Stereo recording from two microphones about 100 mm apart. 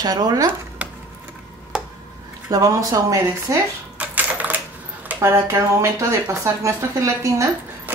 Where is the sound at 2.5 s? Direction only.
35° right (ahead or behind).